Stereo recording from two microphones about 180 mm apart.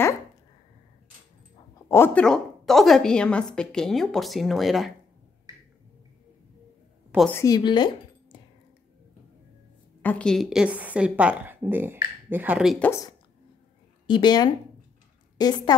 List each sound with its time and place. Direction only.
1.9 s a woman's voice: 10° left (ahead or behind)
7.2 s speech: 15° left (ahead or behind)
10.0 s a woman's voice: 5° left (ahead or behind)
12.7 s a woman's voice: 10° left (ahead or behind)
14.0 s a woman's voice: 25° left (ahead or behind)